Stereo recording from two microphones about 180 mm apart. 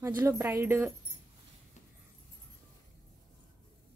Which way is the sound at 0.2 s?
15° right (ahead or behind).